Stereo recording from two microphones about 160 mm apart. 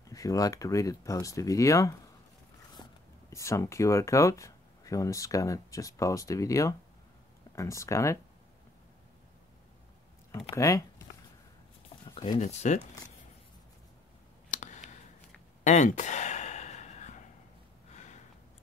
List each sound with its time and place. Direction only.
0.0 s speech: 20° left (ahead or behind)
10.5 s speech: 20° left (ahead or behind)
12.1 s a sound: 30° left (ahead or behind)
12.4 s speech: 50° left (ahead or behind)
14.5 s clicking: 50° left (ahead or behind)
15.6 s sigh: 50° left (ahead or behind)
17.9 s a sound: 50° left (ahead or behind)